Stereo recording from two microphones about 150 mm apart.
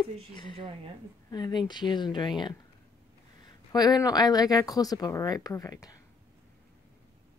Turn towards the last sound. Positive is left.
turn(degrees=25)  # may be behind; listen again after turning